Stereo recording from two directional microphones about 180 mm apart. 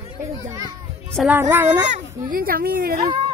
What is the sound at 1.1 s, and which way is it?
Speech, 5° right (ahead or behind).